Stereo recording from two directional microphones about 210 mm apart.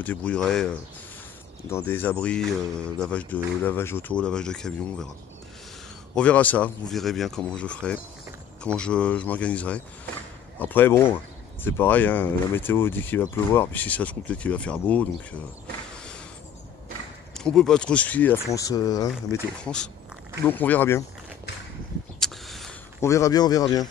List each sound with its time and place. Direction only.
0.0 s speech: 5° left (ahead or behind)
6.1 s speech: 5° left (ahead or behind)
17.3 s speech: 5° left (ahead or behind)
19.3 s speech: 5° left (ahead or behind)
22.2 s a sound: centre (ahead or behind)
22.9 s speech: 15° left (ahead or behind)